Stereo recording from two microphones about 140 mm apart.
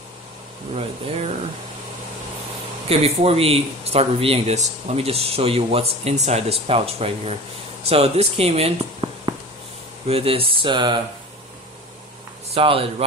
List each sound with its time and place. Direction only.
0.7 s speech: 45° right (ahead or behind)
2.9 s speech: 45° right (ahead or behind)
9.0 s a sound: 35° right (ahead or behind)
10.0 s speech: 45° right (ahead or behind)
12.4 s speech: 45° right (ahead or behind)